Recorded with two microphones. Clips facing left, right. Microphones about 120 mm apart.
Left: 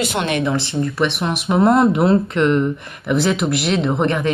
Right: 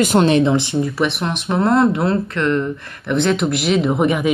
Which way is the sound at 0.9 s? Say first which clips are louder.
Even; centre (ahead or behind).